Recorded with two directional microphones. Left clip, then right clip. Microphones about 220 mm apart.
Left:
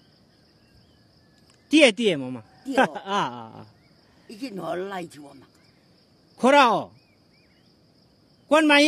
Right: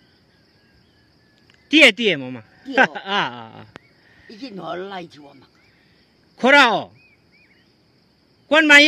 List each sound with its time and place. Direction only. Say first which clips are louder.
1.7 s speech: right 5 dB; centre (ahead or behind)
4.3 s speech: right 1 dB; 30° left (ahead or behind)
5.2 s speech: right 1 dB; 15° left (ahead or behind)
6.3 s speech: right 4 dB; centre (ahead or behind)
8.5 s speech: right 6 dB; 5° left (ahead or behind)